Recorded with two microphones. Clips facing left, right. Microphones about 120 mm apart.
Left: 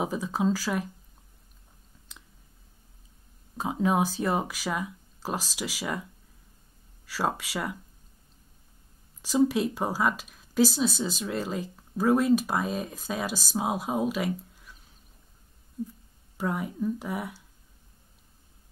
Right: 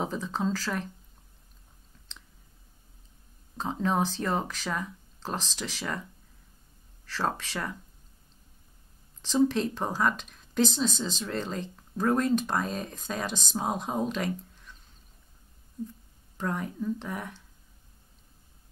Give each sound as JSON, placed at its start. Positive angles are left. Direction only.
{"t": 0.0, "sound": "speech", "side_deg": 10}
{"t": 2.1, "sound": "clicking", "side_deg": 10}
{"t": 3.5, "sound": "speech", "side_deg": 10}
{"t": 7.1, "sound": "speech", "side_deg": 10}
{"t": 9.2, "sound": "speech", "side_deg": 10}
{"t": 16.3, "sound": "speech", "side_deg": 10}